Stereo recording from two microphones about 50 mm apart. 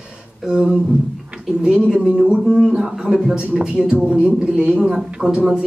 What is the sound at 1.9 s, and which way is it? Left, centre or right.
Speech, centre.